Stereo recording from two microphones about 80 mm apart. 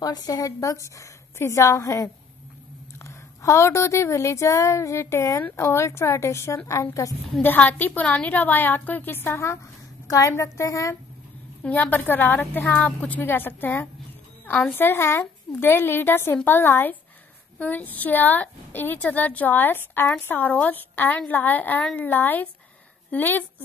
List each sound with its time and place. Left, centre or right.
0.0 s a woman's voice: left
7.4 s a woman's voice: left
10.0 s a woman's voice: left
11.6 s a woman's voice: left